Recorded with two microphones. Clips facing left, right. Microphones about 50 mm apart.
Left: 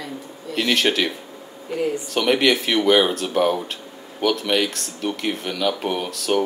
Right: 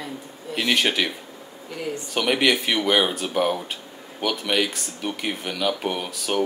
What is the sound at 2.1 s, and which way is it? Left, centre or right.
Speech, centre.